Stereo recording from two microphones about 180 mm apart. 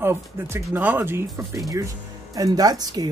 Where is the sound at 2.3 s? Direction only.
20° right (ahead or behind).